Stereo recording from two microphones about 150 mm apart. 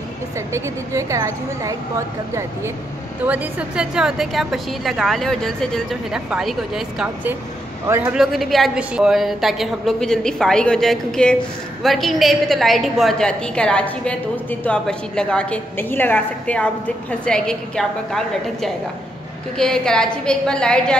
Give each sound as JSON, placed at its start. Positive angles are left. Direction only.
{"t": 0.5, "sound": "a woman's voice", "side_deg": -20}
{"t": 7.9, "sound": "a man's voice", "side_deg": -15}
{"t": 8.2, "sound": "a woman's voice", "side_deg": 0}